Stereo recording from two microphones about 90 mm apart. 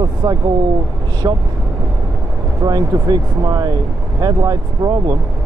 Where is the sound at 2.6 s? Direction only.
45° right (ahead or behind).